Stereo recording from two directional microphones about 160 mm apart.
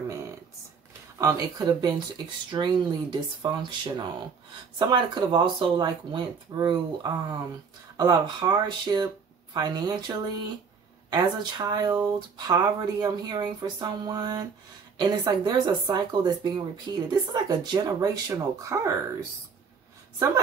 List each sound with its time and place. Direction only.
1.1 s speech: 25° right (ahead or behind)